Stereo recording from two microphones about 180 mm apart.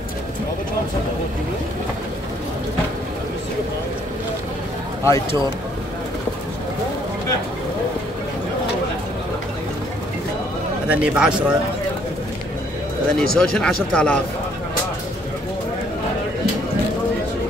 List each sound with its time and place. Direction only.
5.0 s speech: 15° left (ahead or behind)
10.9 s speech: 5° right (ahead or behind)
13.2 s speech: 5° left (ahead or behind)